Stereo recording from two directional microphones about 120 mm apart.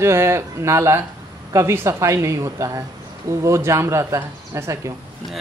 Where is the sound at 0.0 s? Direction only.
25° right (ahead or behind).